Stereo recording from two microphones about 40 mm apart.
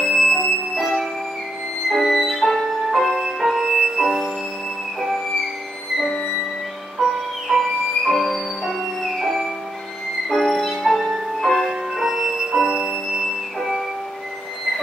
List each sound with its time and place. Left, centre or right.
0.0 s music: centre
7.0 s music: centre
8.0 s music: centre